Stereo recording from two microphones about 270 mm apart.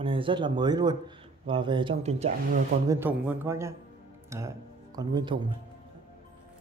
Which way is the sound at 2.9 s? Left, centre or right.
Centre.